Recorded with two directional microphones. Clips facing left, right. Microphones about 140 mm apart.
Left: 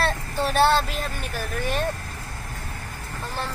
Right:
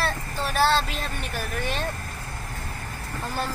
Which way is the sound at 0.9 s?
Centre (ahead or behind).